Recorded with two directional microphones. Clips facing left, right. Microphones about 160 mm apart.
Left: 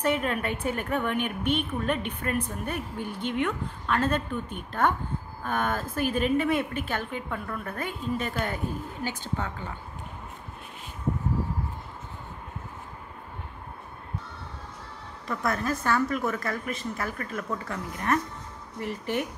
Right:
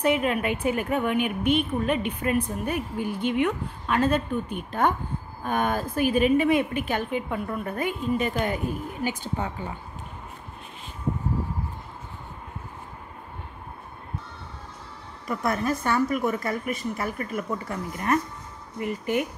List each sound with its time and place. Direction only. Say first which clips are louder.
0.0 s a woman's voice: right 3 dB; 10° right (ahead or behind)
15.2 s a woman's voice: right 3 dB; 15° right (ahead or behind)